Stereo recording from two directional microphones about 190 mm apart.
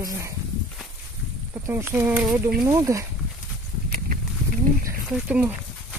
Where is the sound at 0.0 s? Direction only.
15° right (ahead or behind).